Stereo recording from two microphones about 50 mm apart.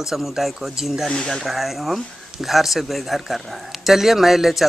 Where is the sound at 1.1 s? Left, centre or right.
Centre.